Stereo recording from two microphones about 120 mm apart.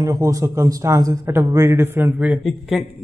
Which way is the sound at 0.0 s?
30° right (ahead or behind).